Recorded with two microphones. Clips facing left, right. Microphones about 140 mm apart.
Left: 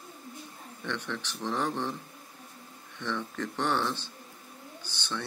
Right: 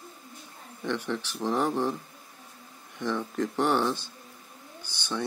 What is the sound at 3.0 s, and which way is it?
Speech, 10° right (ahead or behind).